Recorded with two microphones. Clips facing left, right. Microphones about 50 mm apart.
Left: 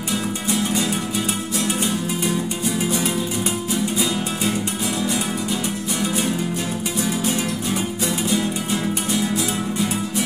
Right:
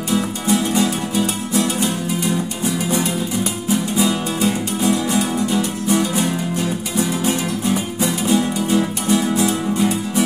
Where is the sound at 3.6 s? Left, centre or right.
Right.